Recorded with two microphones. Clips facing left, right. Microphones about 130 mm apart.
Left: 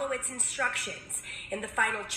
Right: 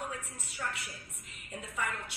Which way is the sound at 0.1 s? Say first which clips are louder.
Left 8 dB; 75° left (ahead or behind).